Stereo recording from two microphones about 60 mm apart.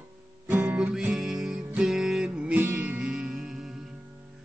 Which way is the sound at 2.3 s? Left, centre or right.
Centre.